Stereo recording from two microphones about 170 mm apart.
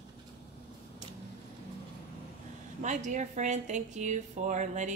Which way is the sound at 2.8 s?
45° right (ahead or behind).